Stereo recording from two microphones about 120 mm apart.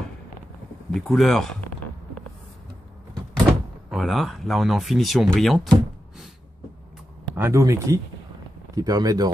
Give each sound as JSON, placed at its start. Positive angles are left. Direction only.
{"t": 0.9, "sound": "speech", "side_deg": 0}
{"t": 3.9, "sound": "speech", "side_deg": 0}
{"t": 7.3, "sound": "speech", "side_deg": -20}